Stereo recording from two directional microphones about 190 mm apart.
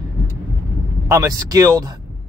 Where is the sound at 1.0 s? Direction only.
20° right (ahead or behind).